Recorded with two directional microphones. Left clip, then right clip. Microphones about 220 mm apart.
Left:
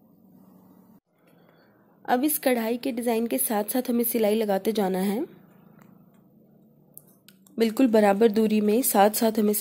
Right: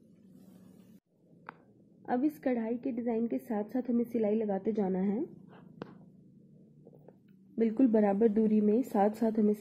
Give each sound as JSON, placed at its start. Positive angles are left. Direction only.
{"t": 2.0, "sound": "a woman's voice", "side_deg": 15}
{"t": 7.5, "sound": "a woman's voice", "side_deg": 20}